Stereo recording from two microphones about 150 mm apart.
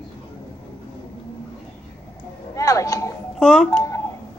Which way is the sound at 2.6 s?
20° left (ahead or behind).